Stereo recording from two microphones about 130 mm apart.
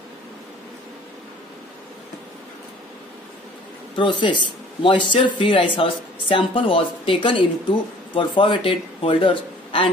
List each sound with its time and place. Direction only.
3.9 s speech: 40° left (ahead or behind)